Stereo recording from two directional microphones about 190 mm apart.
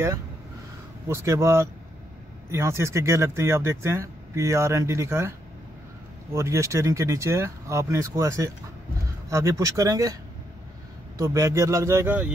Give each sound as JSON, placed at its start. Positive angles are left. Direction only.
{"t": 1.0, "sound": "speech", "side_deg": -15}
{"t": 6.3, "sound": "speech", "side_deg": -15}
{"t": 11.1, "sound": "speech", "side_deg": -15}